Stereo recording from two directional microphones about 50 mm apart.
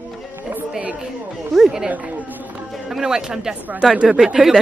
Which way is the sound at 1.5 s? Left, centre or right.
Centre.